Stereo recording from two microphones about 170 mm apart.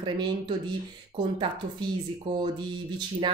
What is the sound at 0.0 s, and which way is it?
Speech, 25° right (ahead or behind).